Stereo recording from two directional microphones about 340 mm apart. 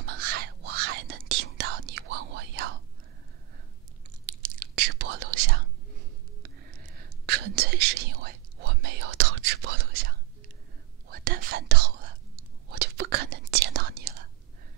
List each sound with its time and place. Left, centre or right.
0.0 s whispering: right
4.3 s whispering: right